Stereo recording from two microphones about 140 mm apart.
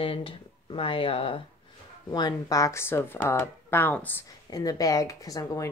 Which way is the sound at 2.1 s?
30° left (ahead or behind).